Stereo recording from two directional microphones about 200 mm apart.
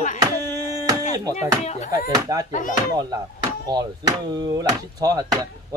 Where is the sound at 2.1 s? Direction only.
20° right (ahead or behind).